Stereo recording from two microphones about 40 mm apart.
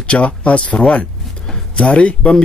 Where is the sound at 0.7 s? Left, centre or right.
Centre.